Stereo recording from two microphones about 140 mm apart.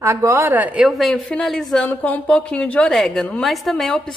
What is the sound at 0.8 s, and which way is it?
Speech, centre (ahead or behind).